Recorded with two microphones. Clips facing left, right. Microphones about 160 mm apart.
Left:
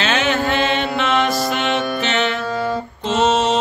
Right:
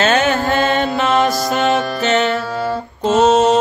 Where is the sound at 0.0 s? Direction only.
45° right (ahead or behind).